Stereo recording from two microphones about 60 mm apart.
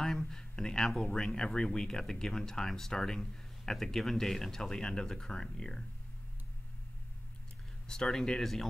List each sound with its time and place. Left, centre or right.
0.0 s speech: centre
7.9 s speech: centre